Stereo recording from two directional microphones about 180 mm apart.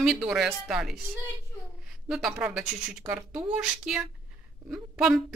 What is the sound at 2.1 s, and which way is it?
A woman's voice, 5° right (ahead or behind).